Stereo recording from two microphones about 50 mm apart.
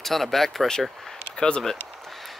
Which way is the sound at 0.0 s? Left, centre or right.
Centre.